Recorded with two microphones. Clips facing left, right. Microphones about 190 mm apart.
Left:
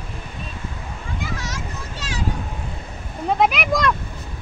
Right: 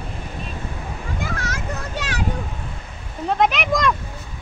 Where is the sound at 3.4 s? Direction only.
5° left (ahead or behind).